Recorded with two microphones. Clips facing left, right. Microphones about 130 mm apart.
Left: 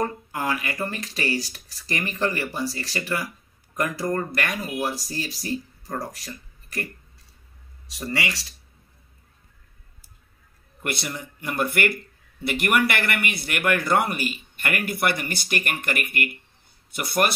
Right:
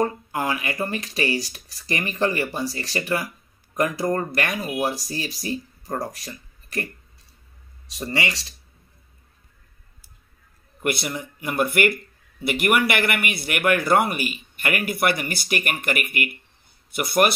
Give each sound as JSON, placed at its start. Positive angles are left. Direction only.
{"t": 0.0, "sound": "speech", "side_deg": -20}
{"t": 8.1, "sound": "speech", "side_deg": -20}
{"t": 10.8, "sound": "speech", "side_deg": -15}